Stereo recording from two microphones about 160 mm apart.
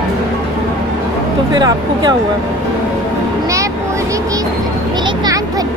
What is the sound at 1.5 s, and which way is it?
Speech, 25° right (ahead or behind).